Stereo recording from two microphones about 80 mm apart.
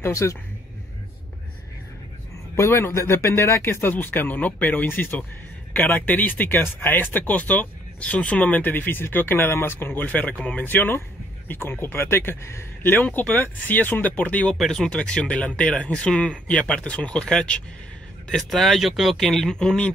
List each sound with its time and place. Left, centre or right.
0.0 s speech: left
2.5 s speech: left; by 14.5 s centre
14.5 s speech: centre
14.9 s speech: centre